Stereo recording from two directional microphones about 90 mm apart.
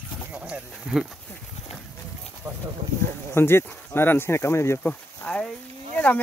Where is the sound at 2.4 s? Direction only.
30° right (ahead or behind).